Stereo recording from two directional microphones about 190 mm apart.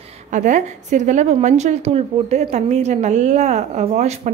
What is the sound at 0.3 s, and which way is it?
A woman's voice, 40° right (ahead or behind).